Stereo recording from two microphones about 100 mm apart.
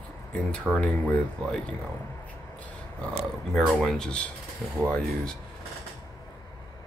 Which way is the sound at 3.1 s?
Centre (ahead or behind).